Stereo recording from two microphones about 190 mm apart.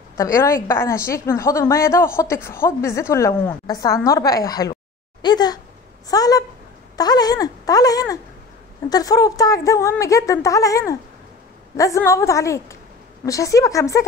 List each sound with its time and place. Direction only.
0.2 s a woman's voice: 15° left (ahead or behind)